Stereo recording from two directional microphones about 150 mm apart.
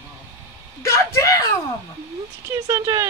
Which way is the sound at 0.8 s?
20° left (ahead or behind).